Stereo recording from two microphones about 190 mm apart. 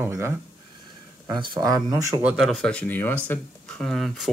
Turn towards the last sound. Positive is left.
turn(degrees=0)  # may be behind; listen again after turning